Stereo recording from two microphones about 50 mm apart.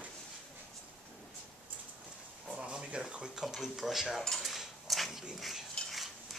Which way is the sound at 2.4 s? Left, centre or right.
Centre.